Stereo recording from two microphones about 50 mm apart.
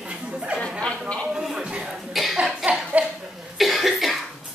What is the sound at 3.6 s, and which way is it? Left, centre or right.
Cough, centre.